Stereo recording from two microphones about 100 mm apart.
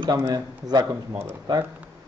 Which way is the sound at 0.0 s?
40° right (ahead or behind).